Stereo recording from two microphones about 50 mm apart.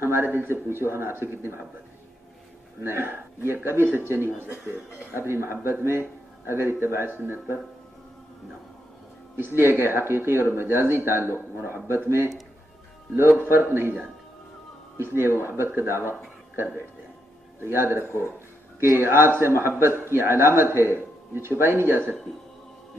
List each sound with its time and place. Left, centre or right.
0.0 s speech: right
2.8 s a man's voice: right
7.1 s speech: right
9.4 s speech: right
13.4 s speech: right
15.0 s a man's voice: right